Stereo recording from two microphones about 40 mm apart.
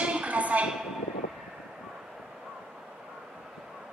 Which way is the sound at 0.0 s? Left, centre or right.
Right.